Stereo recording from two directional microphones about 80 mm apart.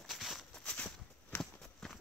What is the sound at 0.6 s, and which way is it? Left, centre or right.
Walk, centre.